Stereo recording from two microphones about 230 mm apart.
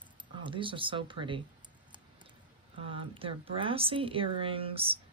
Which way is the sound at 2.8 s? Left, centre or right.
Right.